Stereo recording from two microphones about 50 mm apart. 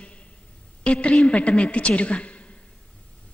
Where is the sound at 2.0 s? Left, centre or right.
Left.